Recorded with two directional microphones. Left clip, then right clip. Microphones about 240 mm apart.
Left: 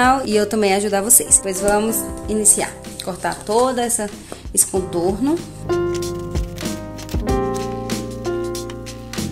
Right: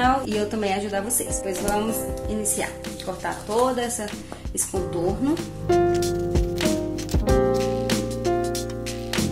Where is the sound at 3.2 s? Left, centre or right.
Left.